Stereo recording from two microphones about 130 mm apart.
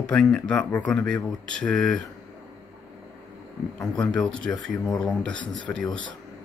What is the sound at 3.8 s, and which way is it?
Speech, 5° left (ahead or behind).